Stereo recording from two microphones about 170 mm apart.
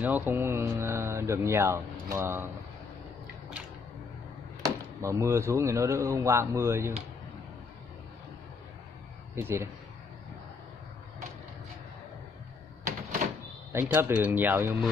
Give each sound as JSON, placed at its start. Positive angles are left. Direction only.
{"t": 0.0, "sound": "speech", "side_deg": -10}
{"t": 4.6, "sound": "speech", "side_deg": -15}
{"t": 9.3, "sound": "speech", "side_deg": -15}
{"t": 13.2, "sound": "door", "side_deg": -50}
{"t": 13.7, "sound": "speech", "side_deg": -15}